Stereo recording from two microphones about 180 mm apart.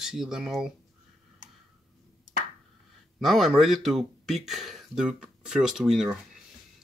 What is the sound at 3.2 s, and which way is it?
Speech, centre (ahead or behind).